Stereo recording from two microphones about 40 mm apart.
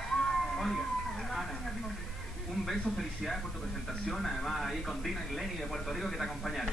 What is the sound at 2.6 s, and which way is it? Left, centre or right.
Speech, centre.